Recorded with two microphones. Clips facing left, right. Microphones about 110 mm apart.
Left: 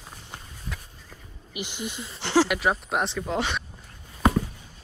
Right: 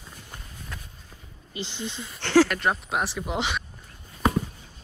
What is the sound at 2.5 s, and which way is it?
Speech, centre (ahead or behind).